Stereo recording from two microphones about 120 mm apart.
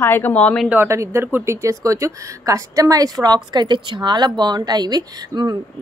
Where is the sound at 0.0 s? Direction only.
20° left (ahead or behind).